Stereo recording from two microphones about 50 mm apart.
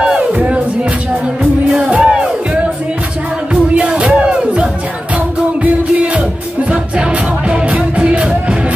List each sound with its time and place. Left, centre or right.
0.3 s music: right
1.8 s music: right
2.0 s music: centre
3.5 s music: right
6.7 s music: right